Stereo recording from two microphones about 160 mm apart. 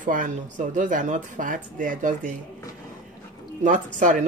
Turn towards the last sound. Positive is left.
turn(degrees=-50)  # may be behind; listen again after turning